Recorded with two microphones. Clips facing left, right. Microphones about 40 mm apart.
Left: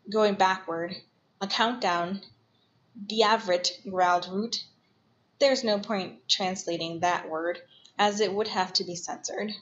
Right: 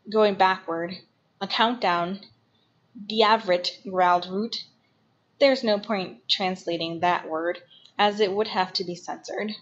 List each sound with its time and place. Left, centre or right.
0.1 s a woman's voice: right